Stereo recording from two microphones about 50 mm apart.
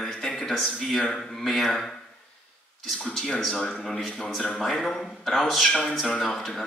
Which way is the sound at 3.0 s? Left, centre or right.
Centre.